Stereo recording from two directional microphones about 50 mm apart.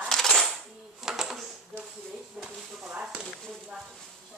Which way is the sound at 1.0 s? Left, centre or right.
Centre.